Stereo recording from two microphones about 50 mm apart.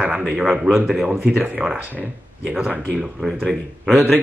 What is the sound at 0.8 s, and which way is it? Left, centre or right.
Speech, centre.